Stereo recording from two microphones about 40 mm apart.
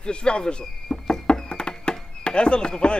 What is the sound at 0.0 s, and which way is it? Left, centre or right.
Speech, left.